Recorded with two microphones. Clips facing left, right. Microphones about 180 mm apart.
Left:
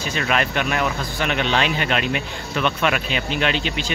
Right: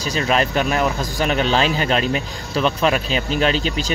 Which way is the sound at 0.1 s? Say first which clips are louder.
Right 4 dB; 35° right (ahead or behind).